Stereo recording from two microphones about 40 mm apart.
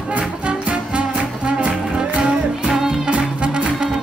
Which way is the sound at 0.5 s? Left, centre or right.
Right.